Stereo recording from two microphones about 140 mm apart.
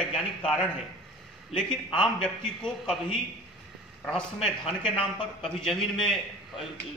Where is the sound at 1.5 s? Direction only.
35° left (ahead or behind).